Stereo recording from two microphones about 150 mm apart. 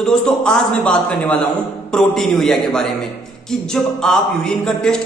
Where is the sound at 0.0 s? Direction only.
5° left (ahead or behind).